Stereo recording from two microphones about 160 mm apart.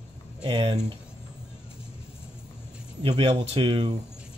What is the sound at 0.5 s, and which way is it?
Speech, 30° right (ahead or behind).